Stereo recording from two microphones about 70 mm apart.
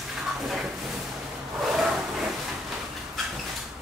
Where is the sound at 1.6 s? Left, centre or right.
Centre.